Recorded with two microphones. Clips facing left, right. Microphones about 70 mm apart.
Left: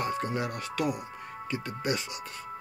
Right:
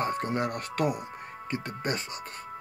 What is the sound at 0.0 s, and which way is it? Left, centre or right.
Speech, right.